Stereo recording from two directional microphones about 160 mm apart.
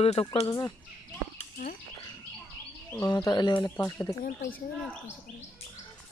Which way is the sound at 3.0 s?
25° left (ahead or behind).